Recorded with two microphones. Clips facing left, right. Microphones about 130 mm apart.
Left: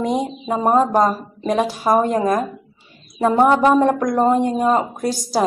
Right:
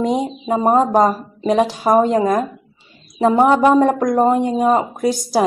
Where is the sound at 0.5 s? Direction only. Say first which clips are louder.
Right 2 dB; 5° right (ahead or behind).